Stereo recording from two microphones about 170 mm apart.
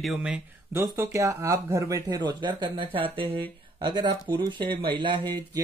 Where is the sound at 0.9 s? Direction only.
20° right (ahead or behind).